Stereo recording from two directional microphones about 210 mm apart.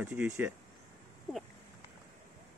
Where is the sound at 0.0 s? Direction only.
10° right (ahead or behind).